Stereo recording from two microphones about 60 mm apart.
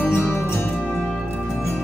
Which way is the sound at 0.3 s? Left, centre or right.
Left.